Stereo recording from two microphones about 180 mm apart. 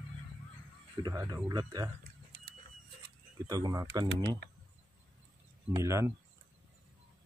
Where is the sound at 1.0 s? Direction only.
20° right (ahead or behind).